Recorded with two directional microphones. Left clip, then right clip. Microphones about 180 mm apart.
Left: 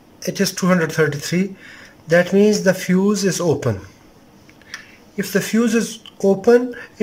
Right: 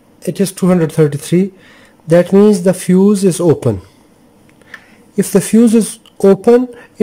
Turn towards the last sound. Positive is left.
turn(degrees=-20)  # may be behind; listen again after turning